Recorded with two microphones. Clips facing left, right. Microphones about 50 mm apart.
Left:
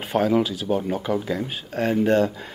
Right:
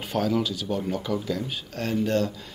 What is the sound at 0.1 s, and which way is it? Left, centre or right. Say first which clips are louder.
Speech: left 5 dB; left.